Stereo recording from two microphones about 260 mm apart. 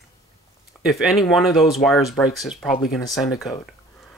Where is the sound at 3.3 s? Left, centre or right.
Centre.